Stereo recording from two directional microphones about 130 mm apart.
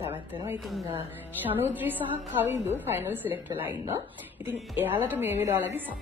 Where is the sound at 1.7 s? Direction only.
15° right (ahead or behind).